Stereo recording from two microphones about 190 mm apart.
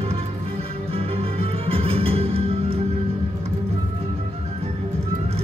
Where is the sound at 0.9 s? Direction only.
30° right (ahead or behind).